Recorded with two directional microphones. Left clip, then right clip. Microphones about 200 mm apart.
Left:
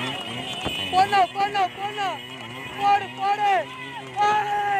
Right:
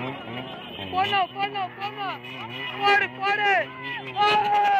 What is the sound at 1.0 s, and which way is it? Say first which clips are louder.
Speech: left 4 dB; 40° left (ahead or behind).